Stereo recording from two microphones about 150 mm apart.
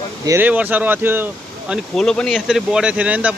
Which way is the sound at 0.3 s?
10° right (ahead or behind).